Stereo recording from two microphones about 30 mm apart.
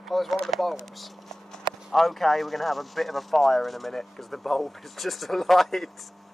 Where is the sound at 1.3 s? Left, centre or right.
Centre.